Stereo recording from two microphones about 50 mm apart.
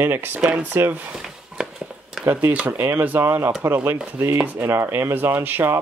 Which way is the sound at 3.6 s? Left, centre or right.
Right.